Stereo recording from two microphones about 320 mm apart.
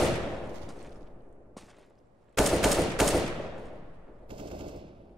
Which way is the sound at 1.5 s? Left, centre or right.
Centre.